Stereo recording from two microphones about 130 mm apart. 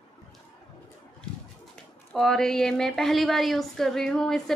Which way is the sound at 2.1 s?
5° left (ahead or behind).